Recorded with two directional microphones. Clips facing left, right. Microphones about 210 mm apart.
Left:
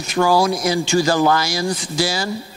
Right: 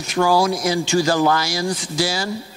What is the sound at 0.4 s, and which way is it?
Speech, 15° left (ahead or behind).